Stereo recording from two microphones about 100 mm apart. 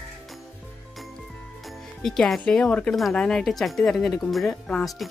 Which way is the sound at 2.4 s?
10° left (ahead or behind).